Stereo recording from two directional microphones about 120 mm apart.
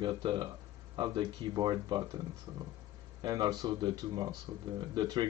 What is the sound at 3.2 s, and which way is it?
Speech, 30° right (ahead or behind).